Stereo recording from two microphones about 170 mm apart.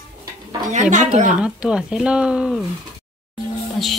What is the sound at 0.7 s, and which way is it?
Speech, 45° right (ahead or behind).